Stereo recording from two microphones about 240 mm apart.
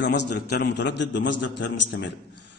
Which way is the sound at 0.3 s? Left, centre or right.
Left.